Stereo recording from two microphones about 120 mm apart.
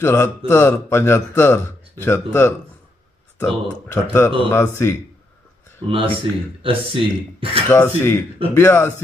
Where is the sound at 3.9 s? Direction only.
20° left (ahead or behind).